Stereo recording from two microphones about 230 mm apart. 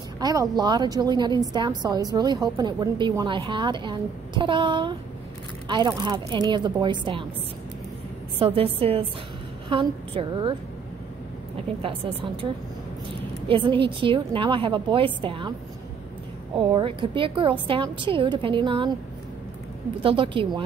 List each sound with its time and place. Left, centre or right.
0.2 s a woman's voice: centre
8.4 s a woman's voice: right
11.8 s a woman's voice: right
13.5 s a woman's voice: right
16.5 s a woman's voice: right
20.0 s a woman's voice: right